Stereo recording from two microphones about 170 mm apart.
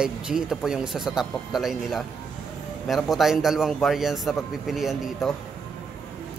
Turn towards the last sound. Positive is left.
turn(degrees=0)  # may be behind; listen again after turning